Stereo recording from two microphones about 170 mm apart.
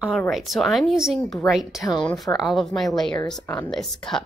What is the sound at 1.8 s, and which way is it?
Speech, 25° left (ahead or behind).